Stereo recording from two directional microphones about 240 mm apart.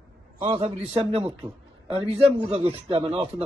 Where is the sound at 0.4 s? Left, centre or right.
Right.